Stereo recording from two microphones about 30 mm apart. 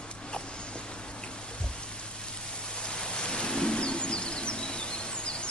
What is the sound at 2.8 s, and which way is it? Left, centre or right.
Rain, left.